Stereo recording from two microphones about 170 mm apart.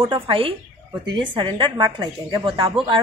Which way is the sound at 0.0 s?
30° right (ahead or behind).